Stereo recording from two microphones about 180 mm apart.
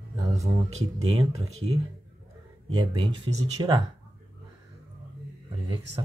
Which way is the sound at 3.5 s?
20° right (ahead or behind).